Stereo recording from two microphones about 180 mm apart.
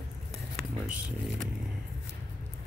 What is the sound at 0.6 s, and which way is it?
Speech, 5° right (ahead or behind).